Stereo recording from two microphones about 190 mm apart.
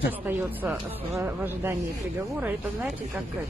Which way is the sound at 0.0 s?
10° right (ahead or behind).